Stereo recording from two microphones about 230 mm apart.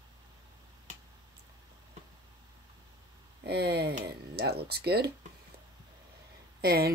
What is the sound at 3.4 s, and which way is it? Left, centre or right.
Speech, right.